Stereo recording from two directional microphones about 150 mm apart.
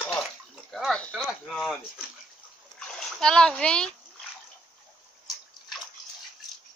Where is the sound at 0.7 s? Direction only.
Centre (ahead or behind).